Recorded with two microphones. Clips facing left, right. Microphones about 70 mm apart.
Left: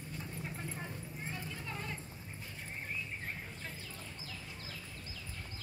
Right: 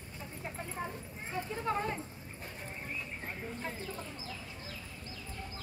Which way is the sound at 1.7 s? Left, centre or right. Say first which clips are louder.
Right 11 dB; right.